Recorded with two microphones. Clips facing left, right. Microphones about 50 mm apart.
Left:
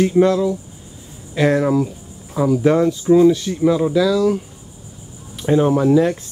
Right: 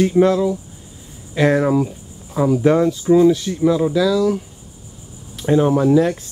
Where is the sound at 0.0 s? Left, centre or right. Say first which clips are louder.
Even; centre.